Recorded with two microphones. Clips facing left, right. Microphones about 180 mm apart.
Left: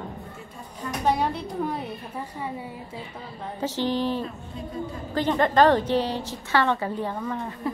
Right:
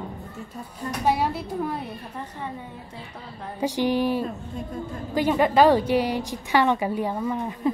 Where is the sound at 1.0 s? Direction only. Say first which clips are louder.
Right 1 dB; 5° right (ahead or behind).